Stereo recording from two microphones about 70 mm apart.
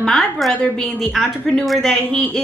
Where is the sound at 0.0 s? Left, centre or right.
Centre.